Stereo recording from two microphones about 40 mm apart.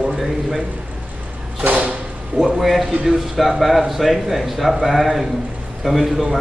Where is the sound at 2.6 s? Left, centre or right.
Centre.